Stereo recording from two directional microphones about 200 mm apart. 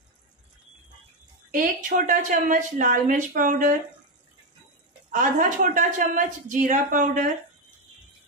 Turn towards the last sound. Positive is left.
turn(degrees=-40)  # may be behind; listen again after turning